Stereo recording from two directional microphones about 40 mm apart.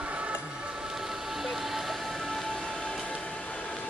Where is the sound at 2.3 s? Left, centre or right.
Centre.